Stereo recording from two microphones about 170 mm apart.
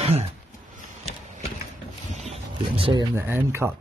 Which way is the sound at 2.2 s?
35° right (ahead or behind).